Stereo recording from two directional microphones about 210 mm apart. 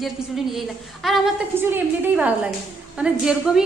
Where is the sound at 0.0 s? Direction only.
Centre (ahead or behind).